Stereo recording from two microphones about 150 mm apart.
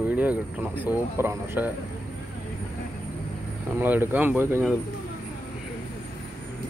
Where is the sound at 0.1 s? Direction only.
10° right (ahead or behind).